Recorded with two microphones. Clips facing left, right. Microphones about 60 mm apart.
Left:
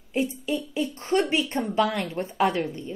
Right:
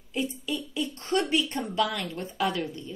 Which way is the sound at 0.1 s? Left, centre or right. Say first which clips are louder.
Left 4 dB; left.